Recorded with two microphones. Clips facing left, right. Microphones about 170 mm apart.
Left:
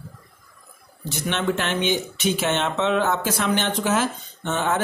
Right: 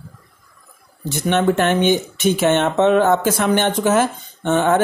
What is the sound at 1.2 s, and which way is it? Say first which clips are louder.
Speech: right 8 dB; 45° right (ahead or behind).